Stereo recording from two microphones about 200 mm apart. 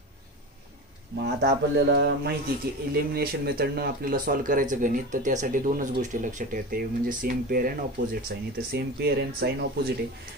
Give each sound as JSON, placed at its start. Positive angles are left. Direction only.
{"t": 1.4, "sound": "speech", "side_deg": -60}